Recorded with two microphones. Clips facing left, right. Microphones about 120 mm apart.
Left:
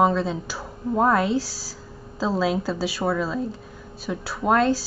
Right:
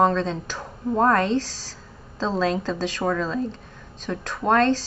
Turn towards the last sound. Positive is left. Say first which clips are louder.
# even
turn(degrees=10)  # may be behind; listen again after turning